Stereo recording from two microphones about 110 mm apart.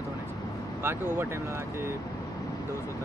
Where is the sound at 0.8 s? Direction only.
20° right (ahead or behind).